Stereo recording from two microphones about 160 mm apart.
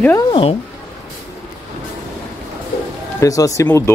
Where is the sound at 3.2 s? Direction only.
20° left (ahead or behind).